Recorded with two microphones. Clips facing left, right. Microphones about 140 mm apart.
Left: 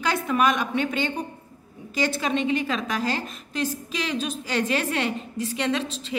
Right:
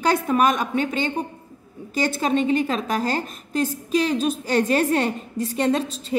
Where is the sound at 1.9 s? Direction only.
45° right (ahead or behind).